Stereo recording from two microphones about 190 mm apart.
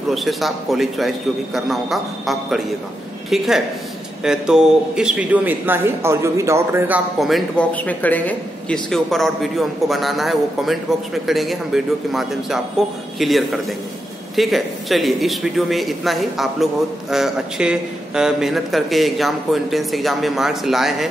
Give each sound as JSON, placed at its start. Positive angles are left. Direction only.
{"t": 0.1, "sound": "a man's voice", "side_deg": 0}
{"t": 7.2, "sound": "a man's voice", "side_deg": 0}